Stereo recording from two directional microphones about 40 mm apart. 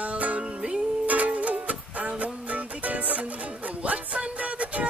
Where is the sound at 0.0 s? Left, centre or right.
Right.